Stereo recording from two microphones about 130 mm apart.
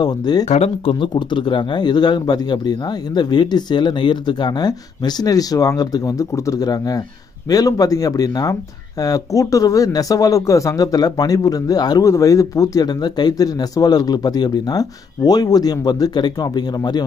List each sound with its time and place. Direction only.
0.0 s a man's voice: 30° left (ahead or behind)
0.5 s speech: 55° left (ahead or behind)
0.9 s a man's voice: 40° left (ahead or behind)